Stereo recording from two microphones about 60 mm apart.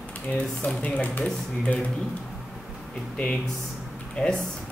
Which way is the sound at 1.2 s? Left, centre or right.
Centre.